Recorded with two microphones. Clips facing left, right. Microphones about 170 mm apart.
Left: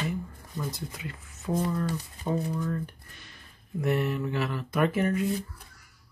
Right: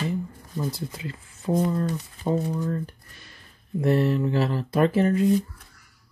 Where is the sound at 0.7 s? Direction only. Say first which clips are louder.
Right 4 dB; 30° right (ahead or behind).